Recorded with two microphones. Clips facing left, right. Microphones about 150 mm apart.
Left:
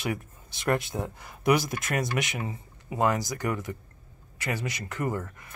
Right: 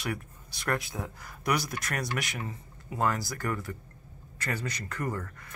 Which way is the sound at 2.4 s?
15° left (ahead or behind).